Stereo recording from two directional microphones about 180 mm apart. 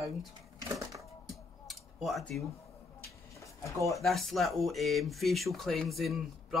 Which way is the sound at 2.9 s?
15° left (ahead or behind).